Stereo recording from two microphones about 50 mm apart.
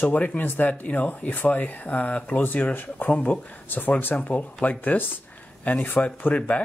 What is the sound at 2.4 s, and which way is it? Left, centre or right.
Speech, left.